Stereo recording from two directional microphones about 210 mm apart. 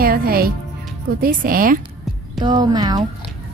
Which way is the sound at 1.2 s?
40° right (ahead or behind).